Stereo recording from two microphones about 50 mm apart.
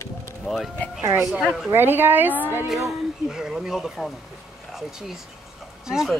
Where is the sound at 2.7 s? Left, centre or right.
Centre.